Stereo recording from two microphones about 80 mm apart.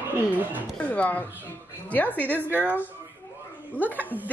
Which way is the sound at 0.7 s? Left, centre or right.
Centre.